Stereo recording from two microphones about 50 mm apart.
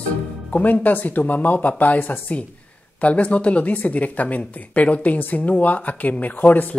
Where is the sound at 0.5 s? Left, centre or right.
Left.